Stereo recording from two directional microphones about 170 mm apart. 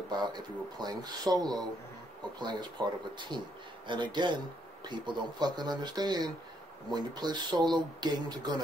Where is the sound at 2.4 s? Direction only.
25° right (ahead or behind).